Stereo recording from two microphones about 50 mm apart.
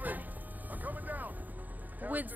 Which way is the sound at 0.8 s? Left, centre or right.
Right.